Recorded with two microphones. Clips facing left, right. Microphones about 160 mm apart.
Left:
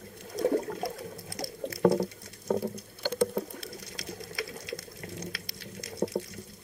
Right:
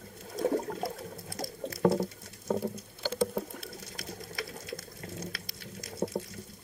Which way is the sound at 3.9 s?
20° left (ahead or behind).